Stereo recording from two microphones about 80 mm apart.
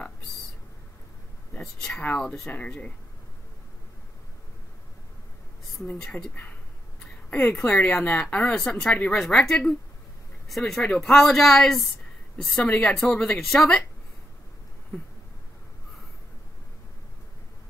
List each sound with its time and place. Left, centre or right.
1.6 s speech: centre
7.2 s a woman's voice: left; by 11.9 s centre
12.5 s speech: centre